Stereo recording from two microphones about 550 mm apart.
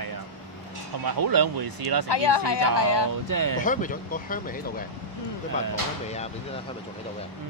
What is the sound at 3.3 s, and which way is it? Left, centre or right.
Speech, right.